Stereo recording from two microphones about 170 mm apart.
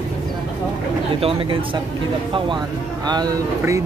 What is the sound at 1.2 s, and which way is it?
Speech, 30° right (ahead or behind).